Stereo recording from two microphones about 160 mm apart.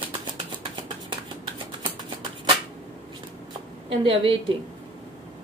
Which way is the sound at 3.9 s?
35° right (ahead or behind).